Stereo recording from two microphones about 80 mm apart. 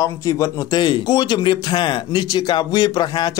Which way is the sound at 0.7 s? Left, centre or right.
Left.